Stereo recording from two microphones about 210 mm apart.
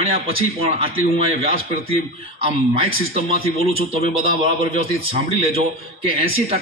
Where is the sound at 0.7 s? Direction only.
25° right (ahead or behind).